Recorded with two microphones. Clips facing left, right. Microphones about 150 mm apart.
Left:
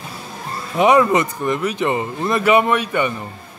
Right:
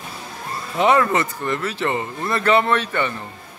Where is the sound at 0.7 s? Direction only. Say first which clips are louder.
Left 3 dB; 15° left (ahead or behind).